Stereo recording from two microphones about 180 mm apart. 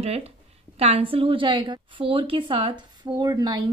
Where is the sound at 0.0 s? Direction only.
35° right (ahead or behind).